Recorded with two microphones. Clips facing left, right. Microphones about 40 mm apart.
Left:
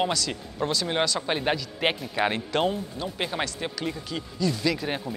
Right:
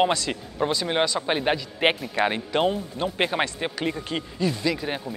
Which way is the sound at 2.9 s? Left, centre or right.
Right.